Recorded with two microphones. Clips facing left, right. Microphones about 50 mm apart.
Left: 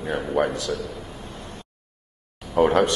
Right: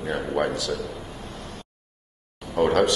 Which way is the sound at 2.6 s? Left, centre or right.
Centre.